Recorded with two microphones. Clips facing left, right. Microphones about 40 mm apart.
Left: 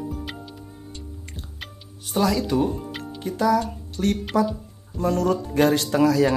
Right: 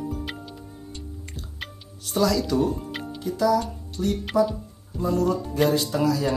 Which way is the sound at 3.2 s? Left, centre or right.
Left.